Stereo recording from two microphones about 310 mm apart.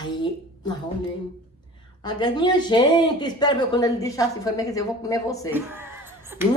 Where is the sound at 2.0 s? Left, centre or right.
Centre.